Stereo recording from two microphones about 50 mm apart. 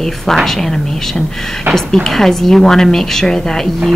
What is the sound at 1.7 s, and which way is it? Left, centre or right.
Speech, right.